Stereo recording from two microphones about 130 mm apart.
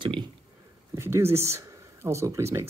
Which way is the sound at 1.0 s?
20° right (ahead or behind).